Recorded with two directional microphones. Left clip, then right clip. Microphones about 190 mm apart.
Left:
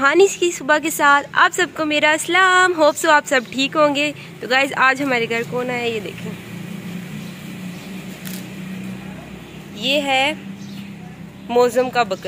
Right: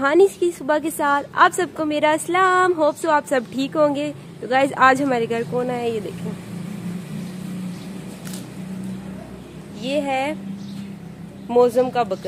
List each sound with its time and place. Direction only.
0.0 s a woman's voice: 10° right (ahead or behind)
9.8 s speech: 5° right (ahead or behind)
11.4 s a woman's voice: 15° right (ahead or behind)